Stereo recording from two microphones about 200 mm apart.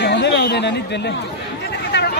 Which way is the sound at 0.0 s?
60° left (ahead or behind).